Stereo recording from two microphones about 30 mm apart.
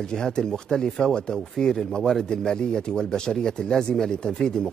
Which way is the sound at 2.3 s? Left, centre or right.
Left.